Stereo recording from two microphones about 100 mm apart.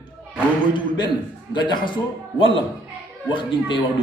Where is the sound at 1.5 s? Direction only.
50° left (ahead or behind).